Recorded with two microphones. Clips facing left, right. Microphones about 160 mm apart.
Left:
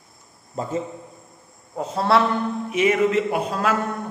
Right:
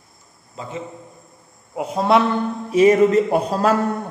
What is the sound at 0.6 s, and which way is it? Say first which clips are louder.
Speech: left 5 dB; 50° left (ahead or behind).